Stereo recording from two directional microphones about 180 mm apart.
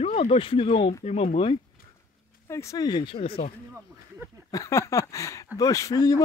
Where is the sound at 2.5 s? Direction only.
15° left (ahead or behind).